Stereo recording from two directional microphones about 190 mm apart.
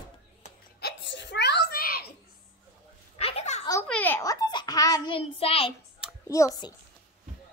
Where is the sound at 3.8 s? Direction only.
5° left (ahead or behind); by 5.7 s 30° left (ahead or behind).